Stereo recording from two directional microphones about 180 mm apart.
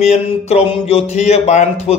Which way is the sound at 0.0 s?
35° left (ahead or behind).